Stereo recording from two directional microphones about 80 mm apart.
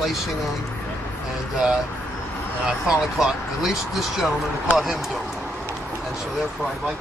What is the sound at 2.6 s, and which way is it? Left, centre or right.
Speech, centre.